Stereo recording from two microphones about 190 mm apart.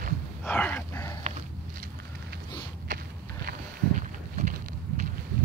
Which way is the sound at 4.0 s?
40° right (ahead or behind).